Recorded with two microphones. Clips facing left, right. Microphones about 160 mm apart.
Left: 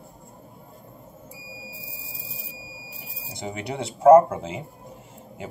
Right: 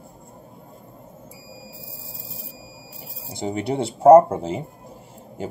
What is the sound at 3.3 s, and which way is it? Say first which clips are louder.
Speech: right 7 dB; 30° right (ahead or behind).